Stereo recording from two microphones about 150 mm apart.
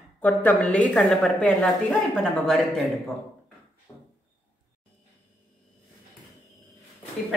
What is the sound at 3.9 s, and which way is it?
Drawer open or close, 30° left (ahead or behind).